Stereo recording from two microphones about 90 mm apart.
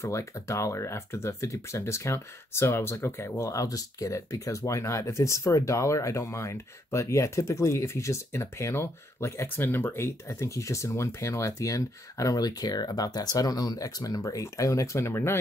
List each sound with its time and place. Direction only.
0.0 s speech: 35° left (ahead or behind)